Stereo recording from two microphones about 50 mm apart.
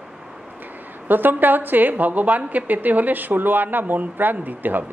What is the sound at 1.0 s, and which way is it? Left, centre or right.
A woman's voice, right.